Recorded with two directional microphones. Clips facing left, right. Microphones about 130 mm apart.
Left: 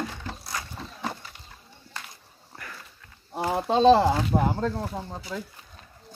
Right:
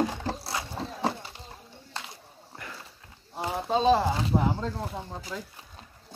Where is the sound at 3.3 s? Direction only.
75° left (ahead or behind).